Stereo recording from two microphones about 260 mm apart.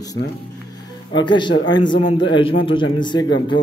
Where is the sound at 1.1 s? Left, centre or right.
Centre.